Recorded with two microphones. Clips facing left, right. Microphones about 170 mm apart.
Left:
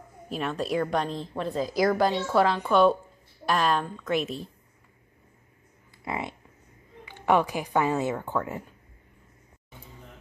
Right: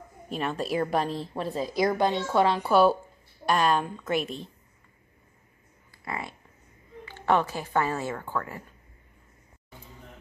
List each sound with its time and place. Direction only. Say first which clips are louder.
0.3 s a woman's voice: left 1 dB; centre (ahead or behind)
3.8 s a woman's voice: right 1 dB; 10° right (ahead or behind)
4.1 s a woman's voice: left 1 dB; centre (ahead or behind)
6.0 s a woman's voice: left 3 dB; 20° left (ahead or behind)